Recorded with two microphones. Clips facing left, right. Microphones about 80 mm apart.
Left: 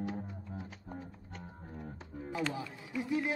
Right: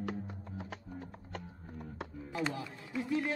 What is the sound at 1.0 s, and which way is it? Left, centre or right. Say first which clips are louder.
Music: right 2 dB; right.